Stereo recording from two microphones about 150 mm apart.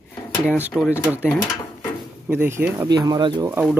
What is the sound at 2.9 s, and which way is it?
Speech, 30° right (ahead or behind).